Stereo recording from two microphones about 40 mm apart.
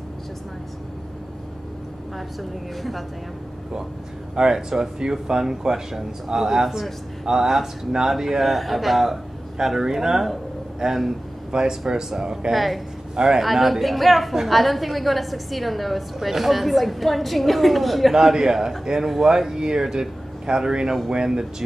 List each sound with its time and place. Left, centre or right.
4.4 s a woman's voice: centre
12.5 s a woman's voice: centre
13.1 s a man's voice: centre
13.4 s a woman's voice: centre
18.1 s a woman's voice: centre